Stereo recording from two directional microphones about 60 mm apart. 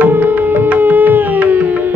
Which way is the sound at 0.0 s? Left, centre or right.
Right.